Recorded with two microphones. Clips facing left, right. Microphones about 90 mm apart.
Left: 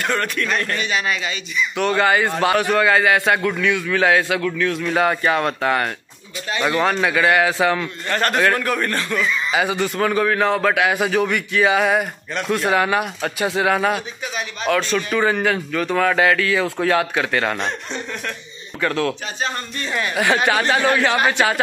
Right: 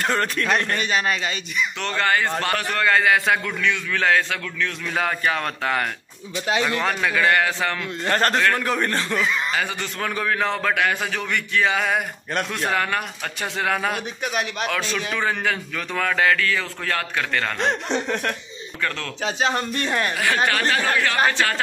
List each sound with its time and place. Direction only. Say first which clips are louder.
0.0 s speech: left 1 dB; 30° right (ahead or behind)
0.7 s speech: even; 40° right (ahead or behind)
1.8 s a man's voice: left 6 dB; 10° left (ahead or behind)
8.1 s speech: even; 30° right (ahead or behind)
8.5 s a man's voice: left 1 dB; 20° right (ahead or behind)
9.5 s a man's voice: left 6 dB; 10° left (ahead or behind)
17.6 s speech: right 4 dB; 85° right
18.8 s a man's voice: left 8 dB; 10° left (ahead or behind)
19.4 s speech: right 3 dB; 90° right
20.2 s a man's voice: left 7 dB; 20° left (ahead or behind)